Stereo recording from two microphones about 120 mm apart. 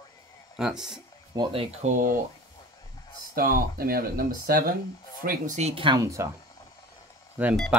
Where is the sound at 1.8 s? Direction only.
85° right.